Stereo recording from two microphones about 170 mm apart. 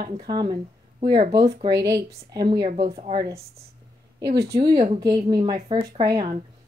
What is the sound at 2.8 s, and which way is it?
Speech, 35° right (ahead or behind).